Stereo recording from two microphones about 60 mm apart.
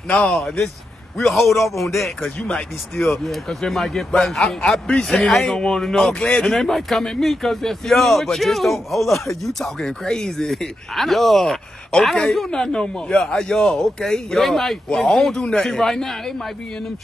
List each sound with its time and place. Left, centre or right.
0.1 s a man's voice: centre
1.1 s speech: centre
2.4 s a man's voice: centre
6.1 s speech: centre
6.4 s a man's voice: centre